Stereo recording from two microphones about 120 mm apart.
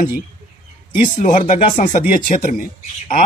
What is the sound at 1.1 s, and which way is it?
Speech, 90° left.